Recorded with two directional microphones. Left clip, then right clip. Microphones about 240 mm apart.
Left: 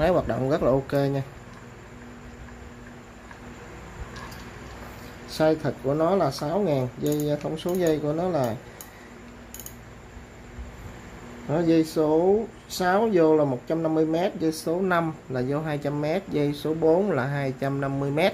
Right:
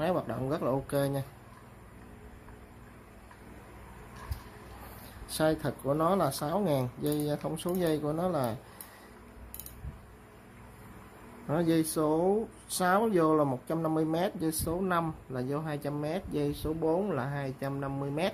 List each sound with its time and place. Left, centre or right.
0.0 s speech: centre
5.3 s speech: centre
11.4 s speech: centre